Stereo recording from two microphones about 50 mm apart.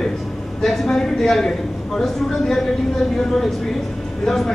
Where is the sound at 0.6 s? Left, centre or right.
Centre.